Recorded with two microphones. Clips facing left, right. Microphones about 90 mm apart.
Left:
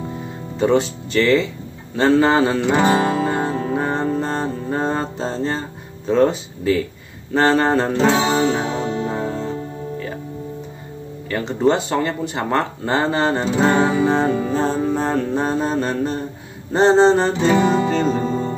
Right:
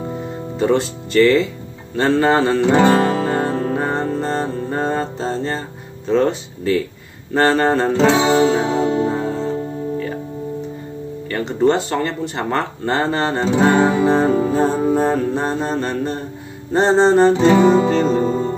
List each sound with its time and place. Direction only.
0.6 s speech: centre (ahead or behind)
2.7 s music: 5° left (ahead or behind)
6.0 s speech: centre (ahead or behind)
8.1 s music: 30° right (ahead or behind)
9.1 s music: centre (ahead or behind)
11.2 s speech: centre (ahead or behind)
14.5 s music: 5° right (ahead or behind)
15.0 s speech: centre (ahead or behind)
17.8 s music: centre (ahead or behind)